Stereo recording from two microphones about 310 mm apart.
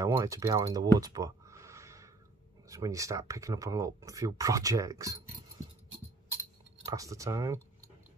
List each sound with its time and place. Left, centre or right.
0.0 s speech: centre
6.9 s speech: centre